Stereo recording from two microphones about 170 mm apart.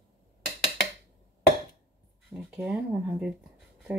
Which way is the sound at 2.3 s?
5° right (ahead or behind).